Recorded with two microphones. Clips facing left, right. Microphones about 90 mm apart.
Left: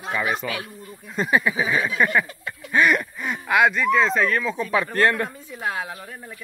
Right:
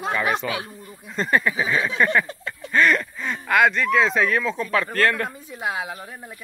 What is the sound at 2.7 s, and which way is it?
Speech, 10° left (ahead or behind).